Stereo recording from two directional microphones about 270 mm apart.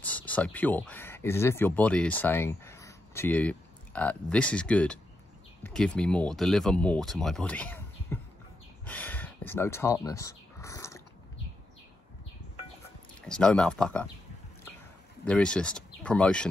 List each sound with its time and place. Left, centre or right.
0.0 s speech: centre
8.8 s a sound: centre
13.2 s speech: centre
15.2 s speech: centre